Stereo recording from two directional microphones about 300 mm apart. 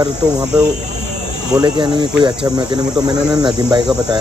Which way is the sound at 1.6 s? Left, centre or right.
Centre.